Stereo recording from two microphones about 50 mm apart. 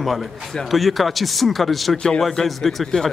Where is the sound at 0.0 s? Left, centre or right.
Centre.